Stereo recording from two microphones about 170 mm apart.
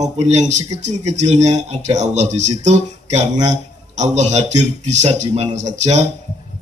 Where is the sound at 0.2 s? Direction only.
40° right (ahead or behind).